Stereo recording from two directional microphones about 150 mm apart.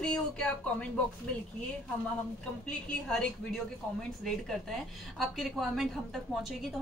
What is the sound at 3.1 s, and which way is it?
Speech, 5° left (ahead or behind).